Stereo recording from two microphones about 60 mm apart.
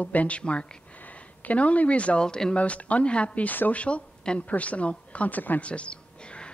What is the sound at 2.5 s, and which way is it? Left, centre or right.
Speech, left.